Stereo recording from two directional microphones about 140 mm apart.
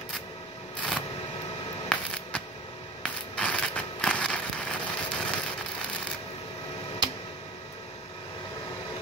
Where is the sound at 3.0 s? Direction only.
5° left (ahead or behind).